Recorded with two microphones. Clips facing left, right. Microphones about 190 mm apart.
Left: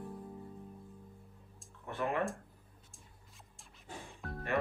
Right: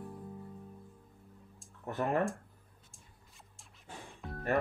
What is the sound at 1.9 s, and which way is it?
Speech, 40° right (ahead or behind).